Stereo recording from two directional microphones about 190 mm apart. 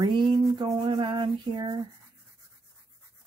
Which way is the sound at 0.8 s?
25° right (ahead or behind).